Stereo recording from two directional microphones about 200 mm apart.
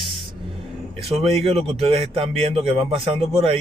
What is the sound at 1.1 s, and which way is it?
Speech, 30° right (ahead or behind).